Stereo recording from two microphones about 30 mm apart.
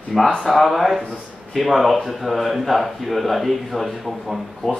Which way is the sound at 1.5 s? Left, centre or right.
Centre.